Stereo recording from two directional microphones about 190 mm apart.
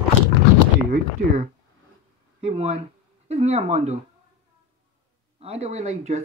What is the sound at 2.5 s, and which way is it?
Speech, 35° right (ahead or behind).